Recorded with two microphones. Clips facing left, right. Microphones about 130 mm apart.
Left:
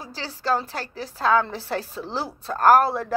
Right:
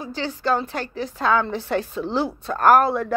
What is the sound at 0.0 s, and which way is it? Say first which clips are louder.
A woman's voice: right 5 dB; 35° left (ahead or behind).